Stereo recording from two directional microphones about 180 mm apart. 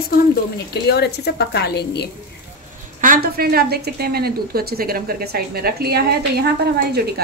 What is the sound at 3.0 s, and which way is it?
A woman's voice, 55° right (ahead or behind).